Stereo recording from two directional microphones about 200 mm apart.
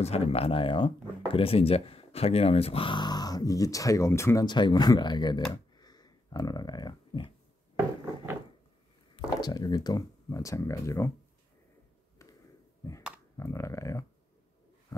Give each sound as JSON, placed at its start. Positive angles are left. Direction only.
{"t": 0.0, "sound": "speech", "side_deg": 30}
{"t": 5.5, "sound": "a sound", "side_deg": 20}
{"t": 9.1, "sound": "speech", "side_deg": 20}
{"t": 13.4, "sound": "speech", "side_deg": 15}
{"t": 14.9, "sound": "heart sounds", "side_deg": 15}